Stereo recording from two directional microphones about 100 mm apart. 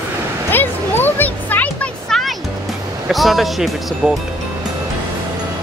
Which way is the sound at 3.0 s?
Centre (ahead or behind).